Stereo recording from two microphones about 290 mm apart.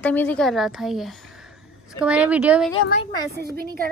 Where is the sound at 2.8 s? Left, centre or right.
Left.